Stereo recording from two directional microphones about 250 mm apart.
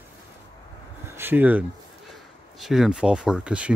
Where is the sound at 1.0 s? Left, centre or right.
Centre.